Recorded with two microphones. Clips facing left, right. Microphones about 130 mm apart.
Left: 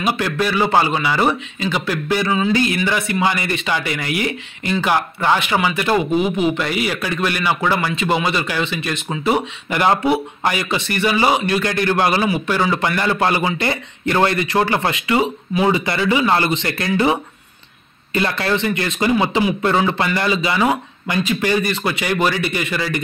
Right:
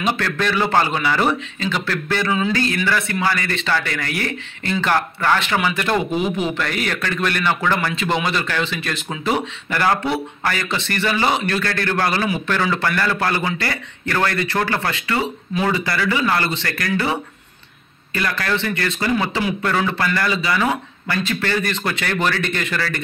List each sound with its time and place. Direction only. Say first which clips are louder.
0.0 s speech: left 2 dB; 10° left (ahead or behind)
2.5 s a man's voice: left 2 dB; 15° left (ahead or behind)
9.7 s a man's voice: left 3 dB; 15° left (ahead or behind)